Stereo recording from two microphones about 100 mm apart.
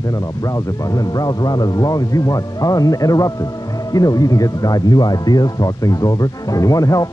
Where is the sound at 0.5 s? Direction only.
40° left (ahead or behind).